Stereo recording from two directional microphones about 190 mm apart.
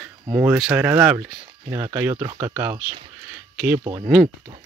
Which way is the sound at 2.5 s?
10° right (ahead or behind).